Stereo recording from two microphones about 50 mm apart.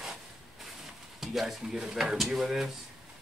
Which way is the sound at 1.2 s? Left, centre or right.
Centre.